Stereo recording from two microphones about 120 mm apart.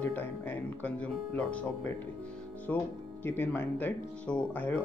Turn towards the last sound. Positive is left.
turn(degrees=15)  # may be behind; listen again after turning